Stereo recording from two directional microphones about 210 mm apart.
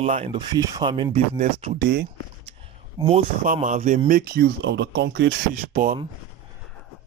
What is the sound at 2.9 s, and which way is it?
Speech, 30° right (ahead or behind).